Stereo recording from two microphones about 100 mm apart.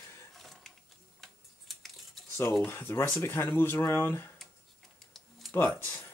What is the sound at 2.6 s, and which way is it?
Speech, 20° left (ahead or behind).